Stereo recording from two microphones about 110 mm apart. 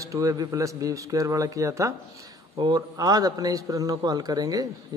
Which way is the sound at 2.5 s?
40° right (ahead or behind).